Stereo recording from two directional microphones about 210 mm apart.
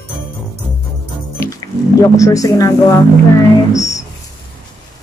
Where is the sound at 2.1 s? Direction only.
15° left (ahead or behind).